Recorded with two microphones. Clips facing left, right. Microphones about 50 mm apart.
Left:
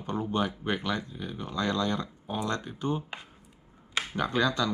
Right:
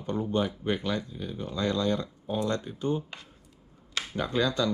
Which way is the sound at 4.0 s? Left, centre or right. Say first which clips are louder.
Left 3 dB; centre.